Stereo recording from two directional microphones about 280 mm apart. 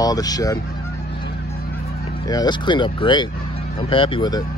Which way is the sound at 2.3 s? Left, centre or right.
Centre.